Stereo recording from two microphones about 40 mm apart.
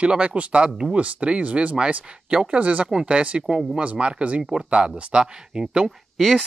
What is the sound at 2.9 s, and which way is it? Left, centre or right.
Speech, right.